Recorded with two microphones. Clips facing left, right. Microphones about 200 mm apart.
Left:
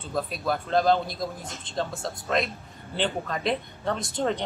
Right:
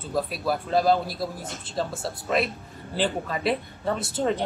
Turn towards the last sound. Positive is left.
turn(degrees=-5)  # may be behind; listen again after turning